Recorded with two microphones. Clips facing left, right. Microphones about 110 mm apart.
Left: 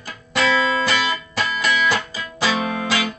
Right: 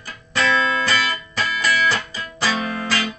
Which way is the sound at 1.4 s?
25° left (ahead or behind).